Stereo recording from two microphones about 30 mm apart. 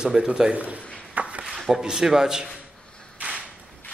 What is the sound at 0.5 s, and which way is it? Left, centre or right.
Speech, right.